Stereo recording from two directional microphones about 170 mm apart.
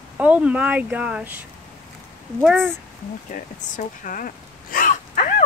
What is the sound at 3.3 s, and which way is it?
Speech, 50° left (ahead or behind).